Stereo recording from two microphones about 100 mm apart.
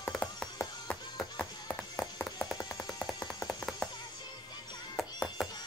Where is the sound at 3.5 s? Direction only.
5° left (ahead or behind).